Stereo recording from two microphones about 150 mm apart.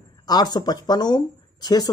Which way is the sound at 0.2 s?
25° left (ahead or behind).